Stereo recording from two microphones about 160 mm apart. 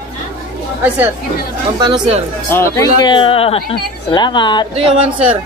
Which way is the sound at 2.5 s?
20° left (ahead or behind).